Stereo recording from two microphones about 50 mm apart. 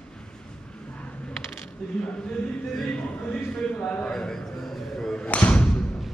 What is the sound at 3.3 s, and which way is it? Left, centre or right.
Speech, centre.